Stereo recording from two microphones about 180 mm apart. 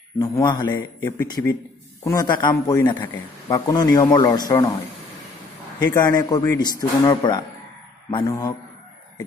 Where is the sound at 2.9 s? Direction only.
25° left (ahead or behind).